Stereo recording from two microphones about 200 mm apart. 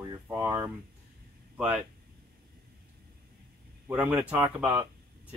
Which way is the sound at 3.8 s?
10° right (ahead or behind).